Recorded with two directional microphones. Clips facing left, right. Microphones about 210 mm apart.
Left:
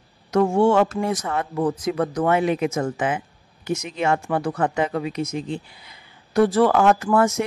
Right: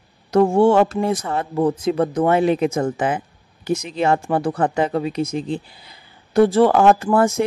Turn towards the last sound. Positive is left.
turn(degrees=-30)  # may be behind; listen again after turning